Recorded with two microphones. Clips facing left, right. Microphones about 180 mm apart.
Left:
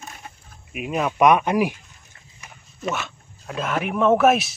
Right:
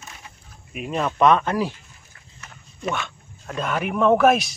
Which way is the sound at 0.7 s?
5° left (ahead or behind).